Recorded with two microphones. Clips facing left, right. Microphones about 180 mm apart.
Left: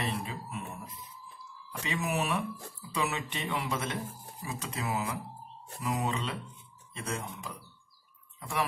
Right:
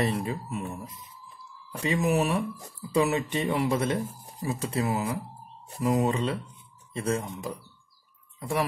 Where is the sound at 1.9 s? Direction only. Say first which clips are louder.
Right 6 dB; 40° right (ahead or behind).